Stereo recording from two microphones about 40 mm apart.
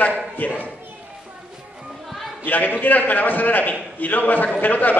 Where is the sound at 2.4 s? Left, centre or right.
Left.